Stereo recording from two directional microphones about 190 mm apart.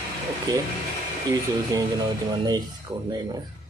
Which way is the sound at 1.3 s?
20° right (ahead or behind).